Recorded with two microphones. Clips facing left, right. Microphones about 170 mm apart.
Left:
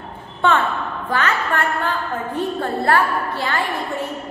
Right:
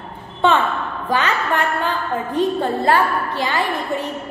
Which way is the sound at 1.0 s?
15° right (ahead or behind).